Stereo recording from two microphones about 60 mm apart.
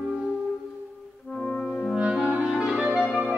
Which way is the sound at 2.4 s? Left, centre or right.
Centre.